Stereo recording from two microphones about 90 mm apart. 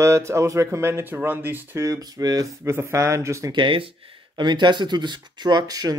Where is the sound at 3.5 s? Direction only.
70° right (ahead or behind).